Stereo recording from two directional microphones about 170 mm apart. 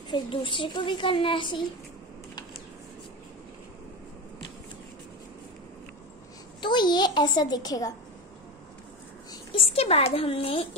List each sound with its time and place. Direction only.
0.1 s a woman's voice: 30° left (ahead or behind)
6.6 s a woman's voice: 25° left (ahead or behind)
9.3 s speech: 30° left (ahead or behind)